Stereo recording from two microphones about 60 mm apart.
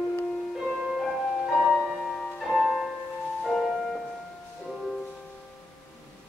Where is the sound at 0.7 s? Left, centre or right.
Centre.